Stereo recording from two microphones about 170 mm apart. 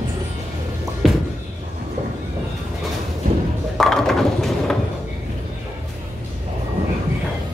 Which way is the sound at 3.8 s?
Centre (ahead or behind).